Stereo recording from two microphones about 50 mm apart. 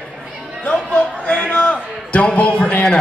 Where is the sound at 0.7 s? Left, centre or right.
Left.